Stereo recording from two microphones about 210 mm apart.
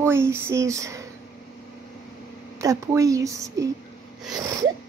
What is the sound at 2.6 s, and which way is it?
Speech, 15° right (ahead or behind).